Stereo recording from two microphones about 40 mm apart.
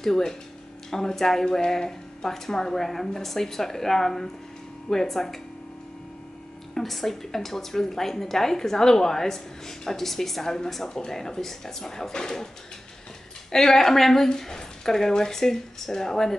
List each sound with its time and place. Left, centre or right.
0.0 s a woman's voice: centre
6.7 s a woman's voice: centre
13.5 s a woman's voice: centre